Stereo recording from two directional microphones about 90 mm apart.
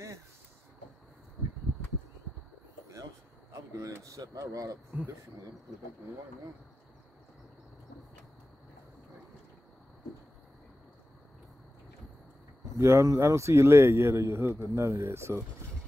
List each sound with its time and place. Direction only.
3.7 s speech: 40° right (ahead or behind)
12.7 s speech: 30° right (ahead or behind)